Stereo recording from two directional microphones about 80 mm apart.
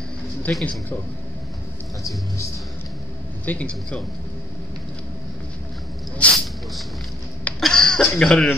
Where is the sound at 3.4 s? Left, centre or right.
Centre.